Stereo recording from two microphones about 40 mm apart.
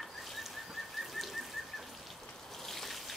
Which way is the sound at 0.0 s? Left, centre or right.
Centre.